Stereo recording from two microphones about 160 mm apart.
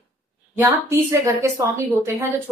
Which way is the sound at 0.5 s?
20° right (ahead or behind).